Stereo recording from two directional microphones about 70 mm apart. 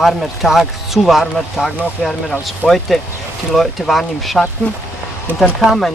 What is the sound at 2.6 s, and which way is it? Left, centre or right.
Speech, centre.